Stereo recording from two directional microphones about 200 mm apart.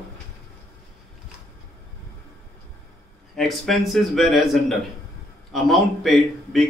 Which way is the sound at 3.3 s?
Centre (ahead or behind).